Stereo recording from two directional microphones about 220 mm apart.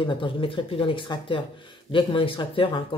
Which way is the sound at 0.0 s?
25° left (ahead or behind).